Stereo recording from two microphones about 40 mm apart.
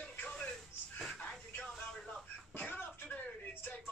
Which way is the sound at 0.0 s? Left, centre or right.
Left.